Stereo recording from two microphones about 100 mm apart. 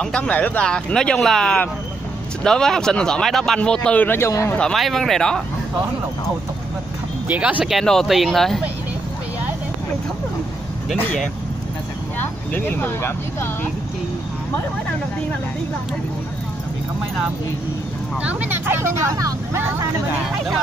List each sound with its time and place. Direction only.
0.0 s speech: 10° left (ahead or behind)
4.3 s speech: 35° left (ahead or behind)
4.6 s speech: 5° left (ahead or behind)
7.2 s speech: 15° right (ahead or behind)
7.6 s speech: centre (ahead or behind)
12.2 s speech: 20° left (ahead or behind)
18.2 s speech: 20° right (ahead or behind)